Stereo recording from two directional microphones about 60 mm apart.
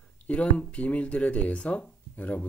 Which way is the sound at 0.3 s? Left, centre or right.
Left.